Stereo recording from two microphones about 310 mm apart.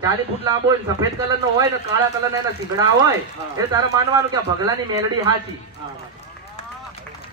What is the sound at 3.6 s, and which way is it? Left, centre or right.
Speech, centre.